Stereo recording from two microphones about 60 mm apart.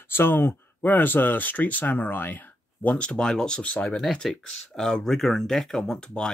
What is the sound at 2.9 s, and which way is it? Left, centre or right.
Speech, centre.